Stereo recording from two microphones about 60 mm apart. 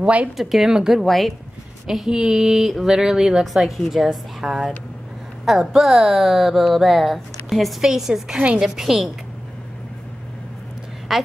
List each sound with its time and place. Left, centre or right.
0.0 s speech: right
0.4 s a woman's voice: centre
1.0 s speech: centre
1.9 s a woman's voice: centre
11.1 s speech: centre